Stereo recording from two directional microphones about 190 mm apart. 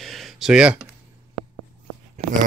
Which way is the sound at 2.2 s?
40° right (ahead or behind).